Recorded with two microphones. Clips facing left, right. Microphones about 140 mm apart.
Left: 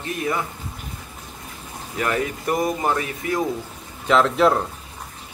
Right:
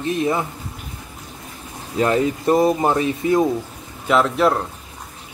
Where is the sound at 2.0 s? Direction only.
25° right (ahead or behind).